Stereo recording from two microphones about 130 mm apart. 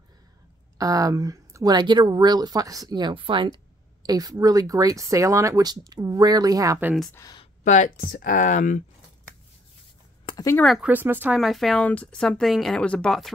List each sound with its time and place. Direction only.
0.7 s speech: 25° right (ahead or behind)
7.6 s speech: 70° left (ahead or behind)
10.3 s a sound: 40° left (ahead or behind)
10.6 s speech: centre (ahead or behind)
10.9 s speech: 15° right (ahead or behind)
11.3 s speech: centre (ahead or behind)